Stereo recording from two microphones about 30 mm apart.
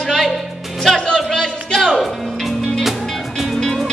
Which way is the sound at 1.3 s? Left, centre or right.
Centre.